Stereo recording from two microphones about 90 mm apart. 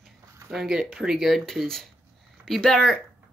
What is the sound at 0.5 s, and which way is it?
Speech, 5° right (ahead or behind).